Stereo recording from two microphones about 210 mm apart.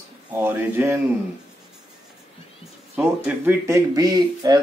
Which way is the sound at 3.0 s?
10° right (ahead or behind).